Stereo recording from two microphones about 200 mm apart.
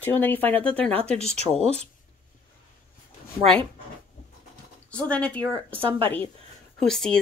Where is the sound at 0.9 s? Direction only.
30° right (ahead or behind).